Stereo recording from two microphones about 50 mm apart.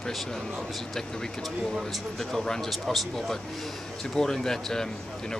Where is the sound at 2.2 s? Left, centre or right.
Centre.